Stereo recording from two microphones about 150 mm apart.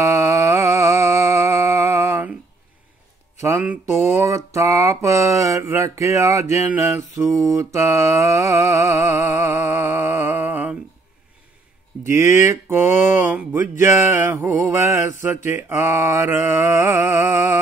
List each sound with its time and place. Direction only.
0.0 s a sound: 20° right (ahead or behind)
3.3 s speech: 20° right (ahead or behind)
4.6 s mantra: 20° right (ahead or behind)
7.2 s mantra: centre (ahead or behind)
7.5 s mantra: 20° right (ahead or behind)
12.1 s mantra: 20° right (ahead or behind)